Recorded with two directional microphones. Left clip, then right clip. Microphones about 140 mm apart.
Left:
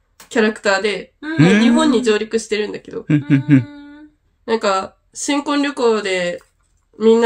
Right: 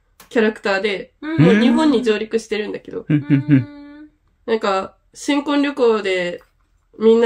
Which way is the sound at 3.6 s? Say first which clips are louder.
Left 1 dB; 25° right (ahead or behind).